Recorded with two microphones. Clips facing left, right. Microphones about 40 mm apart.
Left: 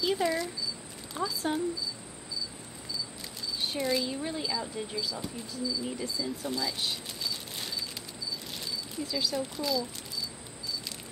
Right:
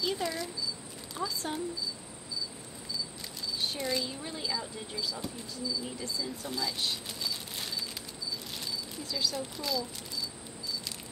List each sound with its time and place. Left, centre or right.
0.0 s speech: centre
3.5 s speech: centre